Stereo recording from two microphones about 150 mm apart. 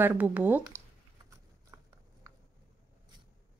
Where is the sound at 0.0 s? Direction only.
10° right (ahead or behind).